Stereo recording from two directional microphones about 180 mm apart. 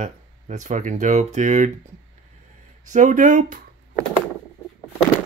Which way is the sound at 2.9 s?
45° right (ahead or behind).